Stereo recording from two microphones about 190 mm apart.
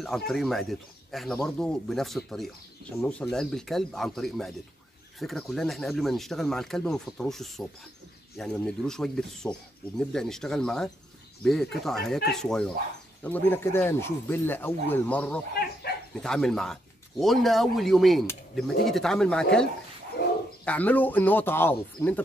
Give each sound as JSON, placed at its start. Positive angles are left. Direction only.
{"t": 0.3, "sound": "speech", "side_deg": 0}
{"t": 20.2, "sound": "bird", "side_deg": 55}
{"t": 20.6, "sound": "speech", "side_deg": 10}